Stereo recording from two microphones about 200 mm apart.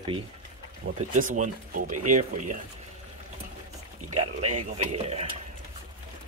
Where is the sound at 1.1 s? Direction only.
40° right (ahead or behind).